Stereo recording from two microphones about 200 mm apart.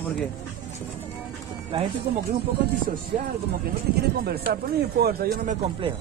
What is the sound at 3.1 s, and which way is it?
Speech, 40° right (ahead or behind).